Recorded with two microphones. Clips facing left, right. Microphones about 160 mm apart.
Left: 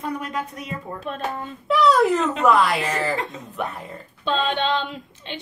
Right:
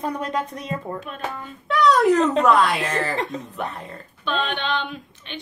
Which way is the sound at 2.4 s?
Centre (ahead or behind).